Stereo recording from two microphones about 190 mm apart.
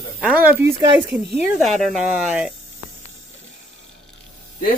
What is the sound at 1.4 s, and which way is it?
Speech, centre (ahead or behind).